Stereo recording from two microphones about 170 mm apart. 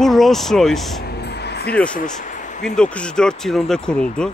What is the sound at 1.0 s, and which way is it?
Vehicle, 75° left (ahead or behind).